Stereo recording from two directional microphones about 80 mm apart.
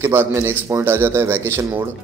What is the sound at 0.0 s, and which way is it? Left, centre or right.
A man's voice, right.